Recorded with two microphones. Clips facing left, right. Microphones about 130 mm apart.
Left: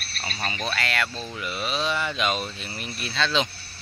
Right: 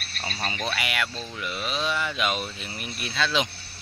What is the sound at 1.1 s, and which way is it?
Speech, 5° left (ahead or behind).